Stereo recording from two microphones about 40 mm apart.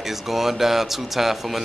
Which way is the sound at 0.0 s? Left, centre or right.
Centre.